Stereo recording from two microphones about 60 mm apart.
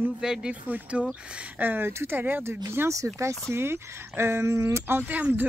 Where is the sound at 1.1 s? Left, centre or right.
Right.